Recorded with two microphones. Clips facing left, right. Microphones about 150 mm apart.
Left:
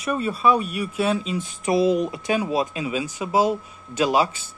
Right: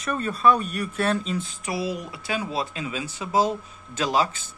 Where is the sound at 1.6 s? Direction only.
25° left (ahead or behind).